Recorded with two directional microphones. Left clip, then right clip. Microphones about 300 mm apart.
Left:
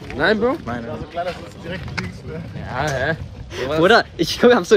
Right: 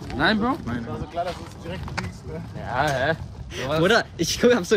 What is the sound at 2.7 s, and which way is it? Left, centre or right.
Speech, centre.